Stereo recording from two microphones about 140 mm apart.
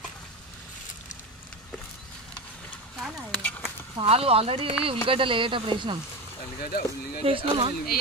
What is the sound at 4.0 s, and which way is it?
Speech, 45° right (ahead or behind).